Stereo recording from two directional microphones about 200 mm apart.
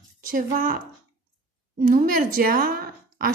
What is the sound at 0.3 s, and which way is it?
Speech, 45° right (ahead or behind).